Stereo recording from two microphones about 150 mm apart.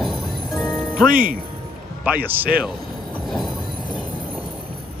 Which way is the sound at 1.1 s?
10° right (ahead or behind).